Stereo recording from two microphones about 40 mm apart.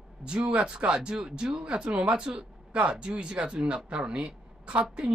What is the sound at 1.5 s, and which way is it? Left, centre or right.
Speech, right.